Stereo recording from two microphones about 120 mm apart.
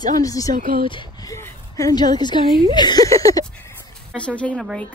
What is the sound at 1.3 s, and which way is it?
A woman's voice, 25° left (ahead or behind).